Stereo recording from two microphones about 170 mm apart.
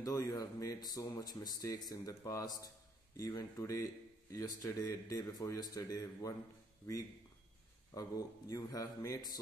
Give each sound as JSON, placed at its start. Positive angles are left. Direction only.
{"t": 0.0, "sound": "speech", "side_deg": 20}
{"t": 7.9, "sound": "speech", "side_deg": 20}